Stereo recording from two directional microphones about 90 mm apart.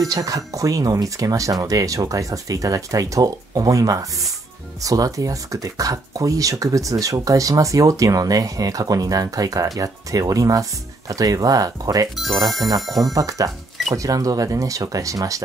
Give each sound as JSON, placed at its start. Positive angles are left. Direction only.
{"t": 0.0, "sound": "speech", "side_deg": -40}
{"t": 13.1, "sound": "speech", "side_deg": -40}